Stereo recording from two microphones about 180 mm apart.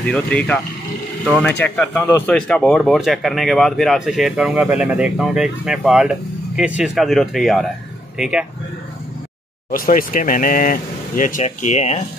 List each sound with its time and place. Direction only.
0.0 s speech: 5° left (ahead or behind)
1.6 s speech: 10° left (ahead or behind); by 8.5 s 5° right (ahead or behind)
9.7 s speech: 50° left (ahead or behind)